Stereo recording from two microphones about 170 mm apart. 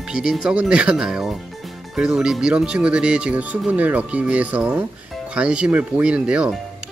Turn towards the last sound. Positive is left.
turn(degrees=-5)  # may be behind; listen again after turning